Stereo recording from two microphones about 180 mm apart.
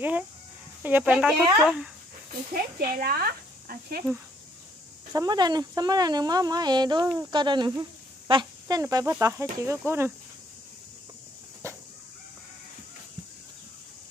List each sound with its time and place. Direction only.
0.8 s speech: 10° right (ahead or behind)
2.5 s speech: 55° right (ahead or behind)
5.1 s speech: 20° right (ahead or behind)
11.6 s chicken: 15° right (ahead or behind)